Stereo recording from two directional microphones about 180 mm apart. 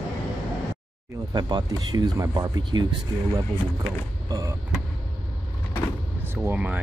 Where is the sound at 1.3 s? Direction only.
25° right (ahead or behind).